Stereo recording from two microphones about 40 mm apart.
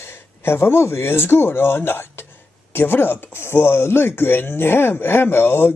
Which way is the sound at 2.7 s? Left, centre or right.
Left.